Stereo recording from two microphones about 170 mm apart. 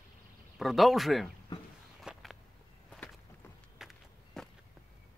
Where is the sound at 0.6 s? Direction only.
Centre (ahead or behind).